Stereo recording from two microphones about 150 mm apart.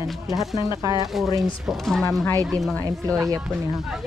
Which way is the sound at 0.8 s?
20° right (ahead or behind).